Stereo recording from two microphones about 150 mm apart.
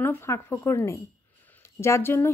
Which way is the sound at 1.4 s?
15° left (ahead or behind).